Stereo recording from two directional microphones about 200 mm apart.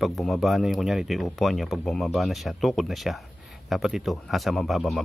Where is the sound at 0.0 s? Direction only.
Centre (ahead or behind).